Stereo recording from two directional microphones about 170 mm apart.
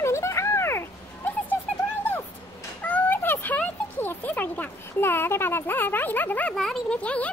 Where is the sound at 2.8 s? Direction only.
10° left (ahead or behind).